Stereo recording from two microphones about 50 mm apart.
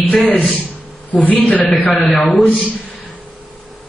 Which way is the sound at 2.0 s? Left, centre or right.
Centre.